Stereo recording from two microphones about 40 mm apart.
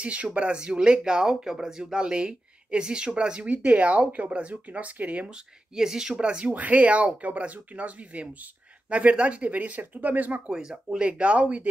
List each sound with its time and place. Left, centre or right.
0.0 s speech: right
3.4 s speech: right
4.6 s speech: right
5.3 s speech: centre
6.4 s speech: right
10.4 s speech: right